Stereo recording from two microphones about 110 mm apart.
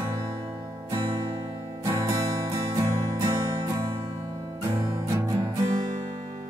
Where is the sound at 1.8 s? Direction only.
30° right (ahead or behind).